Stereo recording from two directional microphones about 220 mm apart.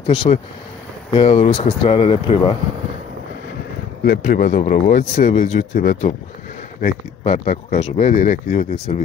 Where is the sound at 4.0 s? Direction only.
40° left (ahead or behind).